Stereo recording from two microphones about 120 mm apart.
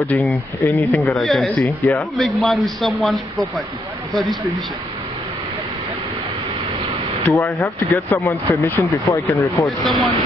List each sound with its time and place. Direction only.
0.0 s speech: 15° left (ahead or behind)
1.0 s speech: centre (ahead or behind)
7.2 s speech: 15° left (ahead or behind)
9.8 s speech: centre (ahead or behind)